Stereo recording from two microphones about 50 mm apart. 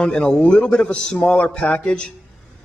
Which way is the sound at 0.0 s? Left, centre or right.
Centre.